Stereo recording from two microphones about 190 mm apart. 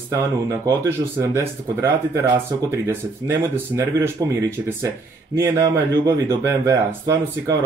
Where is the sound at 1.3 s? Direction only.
15° right (ahead or behind).